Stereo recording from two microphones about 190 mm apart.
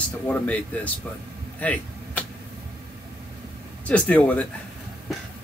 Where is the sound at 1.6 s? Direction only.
10° left (ahead or behind).